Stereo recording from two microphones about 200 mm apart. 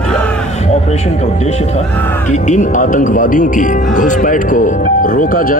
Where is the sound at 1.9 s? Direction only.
10° left (ahead or behind).